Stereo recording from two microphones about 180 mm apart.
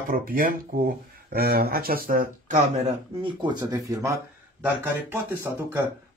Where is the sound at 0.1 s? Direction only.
55° right (ahead or behind).